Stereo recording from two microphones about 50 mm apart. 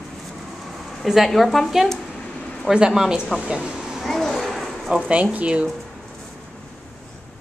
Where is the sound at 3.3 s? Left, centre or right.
Centre.